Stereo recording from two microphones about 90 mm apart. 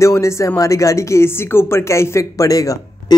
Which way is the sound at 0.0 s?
35° left (ahead or behind).